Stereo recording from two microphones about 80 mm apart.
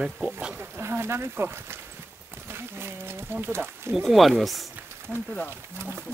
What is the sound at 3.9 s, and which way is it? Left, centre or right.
Speech, centre.